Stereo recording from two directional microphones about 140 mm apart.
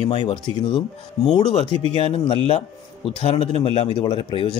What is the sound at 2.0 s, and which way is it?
A man's voice, 45° left (ahead or behind).